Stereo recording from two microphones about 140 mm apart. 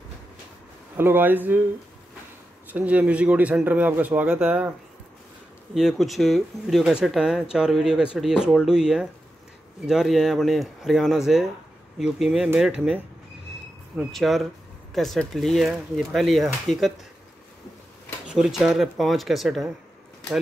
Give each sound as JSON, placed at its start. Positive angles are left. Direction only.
{"t": 0.9, "sound": "speech", "side_deg": -15}
{"t": 2.7, "sound": "speech", "side_deg": -10}
{"t": 5.8, "sound": "speech", "side_deg": 0}
{"t": 18.2, "sound": "speech", "side_deg": -5}